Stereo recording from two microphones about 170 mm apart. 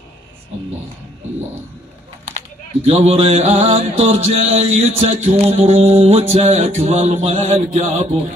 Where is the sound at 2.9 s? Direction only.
40° right (ahead or behind).